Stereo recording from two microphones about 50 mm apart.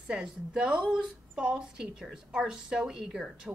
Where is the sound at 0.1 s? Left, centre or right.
Centre.